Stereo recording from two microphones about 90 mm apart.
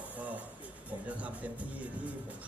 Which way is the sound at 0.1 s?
15° right (ahead or behind).